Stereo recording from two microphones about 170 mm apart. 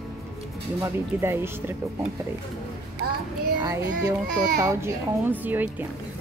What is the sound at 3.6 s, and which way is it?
A child's voice, 20° right (ahead or behind).